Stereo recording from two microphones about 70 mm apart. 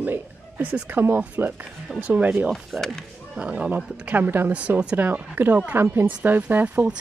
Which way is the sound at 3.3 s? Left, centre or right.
Centre.